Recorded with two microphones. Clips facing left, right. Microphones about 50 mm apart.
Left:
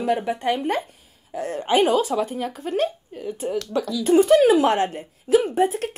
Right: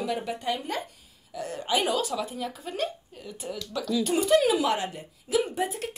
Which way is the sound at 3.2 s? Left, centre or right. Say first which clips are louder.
Left 10 dB; left.